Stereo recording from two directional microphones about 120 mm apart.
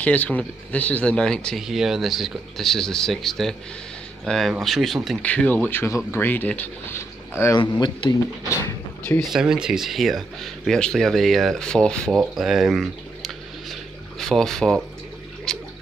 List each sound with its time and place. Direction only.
0.0 s speech: 10° left (ahead or behind)
5.2 s speech: 10° left (ahead or behind)
7.5 s speech: 40° left (ahead or behind)
9.2 s speech: 5° right (ahead or behind)
12.4 s a sound: centre (ahead or behind)
15.5 s water: 5° left (ahead or behind)